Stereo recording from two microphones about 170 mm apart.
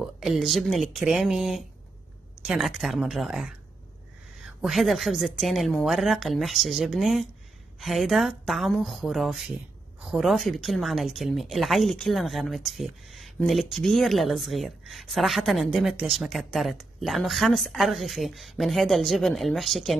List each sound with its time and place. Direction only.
0.2 s speech: centre (ahead or behind)